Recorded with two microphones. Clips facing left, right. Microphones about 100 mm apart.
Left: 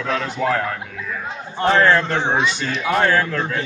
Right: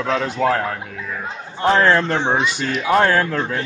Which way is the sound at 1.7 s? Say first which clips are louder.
Even; 15° right (ahead or behind).